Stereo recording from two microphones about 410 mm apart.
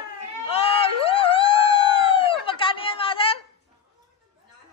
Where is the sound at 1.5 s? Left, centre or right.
Right.